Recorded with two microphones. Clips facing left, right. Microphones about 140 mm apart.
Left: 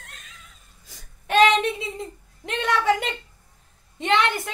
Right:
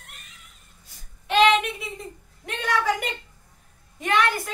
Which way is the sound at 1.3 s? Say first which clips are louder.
Left 1 dB; 45° left (ahead or behind).